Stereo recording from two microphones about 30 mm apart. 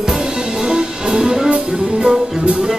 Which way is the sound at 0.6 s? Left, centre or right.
Right.